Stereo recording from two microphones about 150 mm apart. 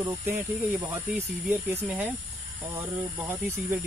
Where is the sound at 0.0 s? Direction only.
20° right (ahead or behind).